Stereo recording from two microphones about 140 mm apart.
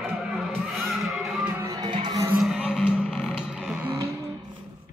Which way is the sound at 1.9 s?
35° right (ahead or behind).